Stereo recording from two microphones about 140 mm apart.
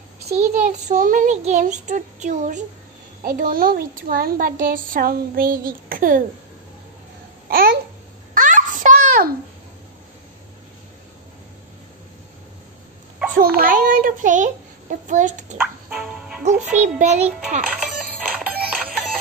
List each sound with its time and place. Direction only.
0.3 s a child's voice: 60° right (ahead or behind)
3.2 s speech: 85° right
7.4 s babbling: 90° right
8.4 s a sound: 65° right (ahead or behind)
13.4 s a sound: 90° right; by 15.5 s 60° right (ahead or behind)
15.6 s music: 10° right (ahead or behind)
16.4 s a child's voice: 55° right (ahead or behind)
17.6 s music: 5° right (ahead or behind)